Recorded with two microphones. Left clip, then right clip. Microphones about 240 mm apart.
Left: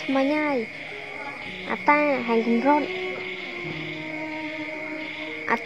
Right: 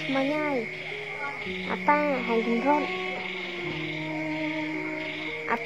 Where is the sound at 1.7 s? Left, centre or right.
Left.